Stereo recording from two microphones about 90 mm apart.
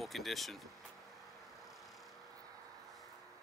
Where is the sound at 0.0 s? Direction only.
Centre (ahead or behind).